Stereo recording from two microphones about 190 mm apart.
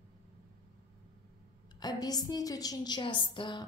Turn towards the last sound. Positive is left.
turn(degrees=25)  # may be behind; listen again after turning